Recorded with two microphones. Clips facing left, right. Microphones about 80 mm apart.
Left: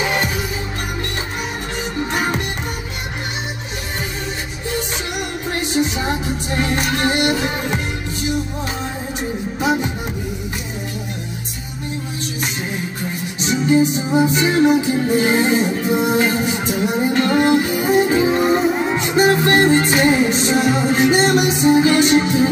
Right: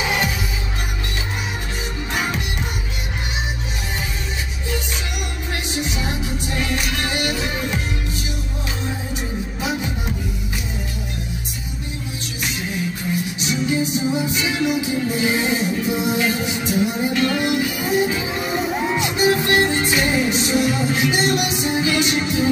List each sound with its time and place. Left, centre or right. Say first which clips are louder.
5.5 s music: left 7 dB; left
13.4 s music: left 9 dB; left